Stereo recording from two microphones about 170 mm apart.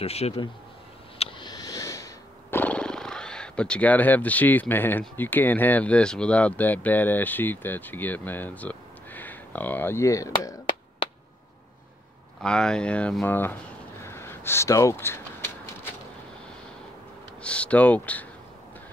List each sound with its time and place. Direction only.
0.0 s a man's voice: 35° left (ahead or behind)
1.1 s a sound: 35° left (ahead or behind)
1.5 s purr: 20° left (ahead or behind)
5.0 s speech: 10° left (ahead or behind)
12.4 s speech: 5° left (ahead or behind)
14.0 s a sound: 15° left (ahead or behind)
17.4 s speech: 5° left (ahead or behind)